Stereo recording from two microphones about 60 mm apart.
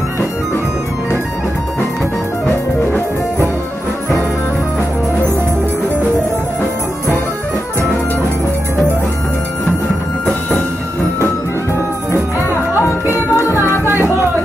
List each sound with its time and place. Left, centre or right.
13.0 s music: left